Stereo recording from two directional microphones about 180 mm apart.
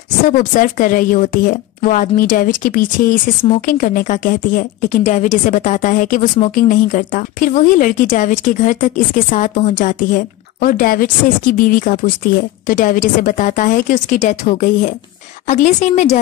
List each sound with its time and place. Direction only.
0.4 s a woman's voice: 50° left (ahead or behind)